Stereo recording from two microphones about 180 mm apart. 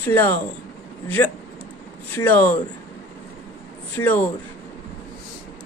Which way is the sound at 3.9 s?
10° left (ahead or behind).